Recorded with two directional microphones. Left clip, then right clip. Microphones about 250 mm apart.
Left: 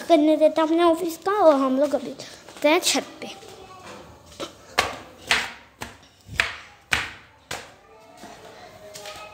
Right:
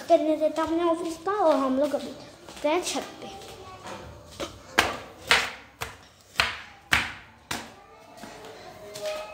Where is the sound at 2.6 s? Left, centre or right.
Left.